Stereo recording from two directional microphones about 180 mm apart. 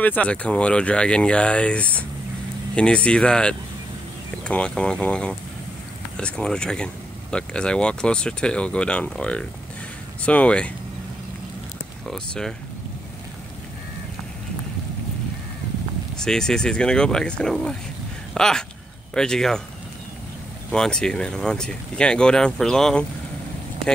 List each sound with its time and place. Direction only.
0.0 s speech: 10° left (ahead or behind)
12.1 s speech: centre (ahead or behind)
16.2 s speech: 5° left (ahead or behind)
20.7 s speech: 5° left (ahead or behind)